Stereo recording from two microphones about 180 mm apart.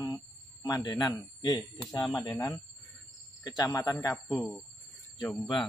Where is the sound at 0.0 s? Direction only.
20° left (ahead or behind).